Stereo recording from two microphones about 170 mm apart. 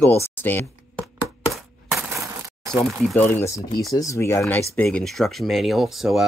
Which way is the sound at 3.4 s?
20° left (ahead or behind).